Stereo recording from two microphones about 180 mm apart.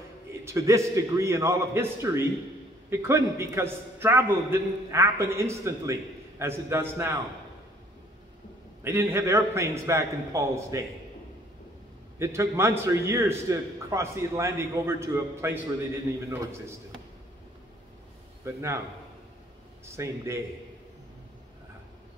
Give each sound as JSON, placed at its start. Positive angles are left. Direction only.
{"t": 0.3, "sound": "a man's voice", "side_deg": -15}
{"t": 8.8, "sound": "a man's voice", "side_deg": -15}
{"t": 12.2, "sound": "a man's voice", "side_deg": -15}
{"t": 18.4, "sound": "a man's voice", "side_deg": -15}
{"t": 20.0, "sound": "a man's voice", "side_deg": -15}